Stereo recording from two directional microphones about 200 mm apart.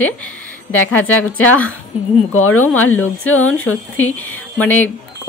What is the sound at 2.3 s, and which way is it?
Speech, 90° left.